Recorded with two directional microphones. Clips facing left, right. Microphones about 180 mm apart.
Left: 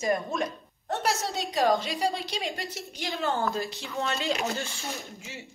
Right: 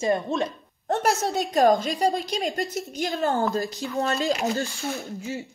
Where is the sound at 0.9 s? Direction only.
50° right (ahead or behind).